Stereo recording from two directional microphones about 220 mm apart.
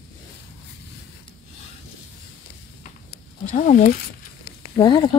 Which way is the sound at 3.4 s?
35° left (ahead or behind).